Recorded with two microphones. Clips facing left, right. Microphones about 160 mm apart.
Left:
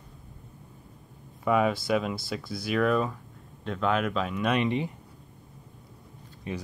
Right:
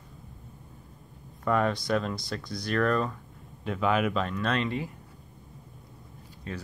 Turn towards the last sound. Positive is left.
turn(degrees=15)  # may be behind; listen again after turning